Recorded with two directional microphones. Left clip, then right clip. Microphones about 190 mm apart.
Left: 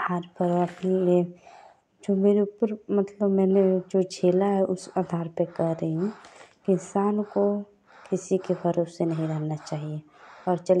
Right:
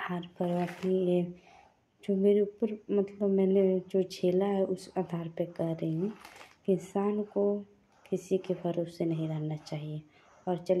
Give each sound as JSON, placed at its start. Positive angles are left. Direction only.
{"t": 0.0, "sound": "a woman's voice", "side_deg": 20}